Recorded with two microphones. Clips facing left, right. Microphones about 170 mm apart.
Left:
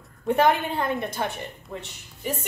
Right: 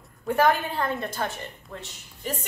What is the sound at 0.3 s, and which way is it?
A woman's voice, 20° left (ahead or behind).